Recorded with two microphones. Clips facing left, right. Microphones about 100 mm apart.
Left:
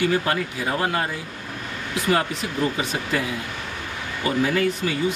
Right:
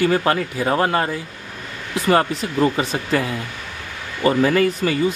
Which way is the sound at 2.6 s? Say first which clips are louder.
Right 6 dB; 50° right (ahead or behind).